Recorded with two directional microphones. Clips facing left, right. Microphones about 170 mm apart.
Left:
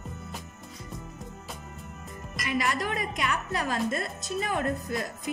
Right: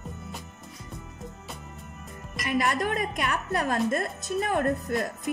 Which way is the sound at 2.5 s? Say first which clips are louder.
Right 3 dB; 50° right (ahead or behind).